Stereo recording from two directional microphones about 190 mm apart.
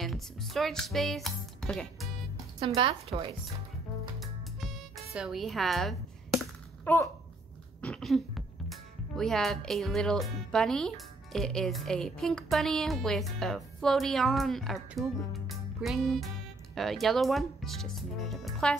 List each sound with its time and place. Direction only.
0.0 s speech: centre (ahead or behind)
2.6 s speech: 30° right (ahead or behind)
5.1 s a sound: centre (ahead or behind)
7.8 s a woman's voice: 5° left (ahead or behind)